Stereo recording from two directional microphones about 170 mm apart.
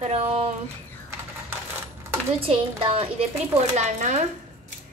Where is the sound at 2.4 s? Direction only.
35° right (ahead or behind).